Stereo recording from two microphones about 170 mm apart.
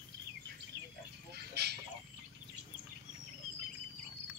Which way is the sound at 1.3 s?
75° right (ahead or behind).